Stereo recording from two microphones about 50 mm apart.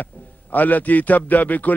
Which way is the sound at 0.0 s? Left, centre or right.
Left.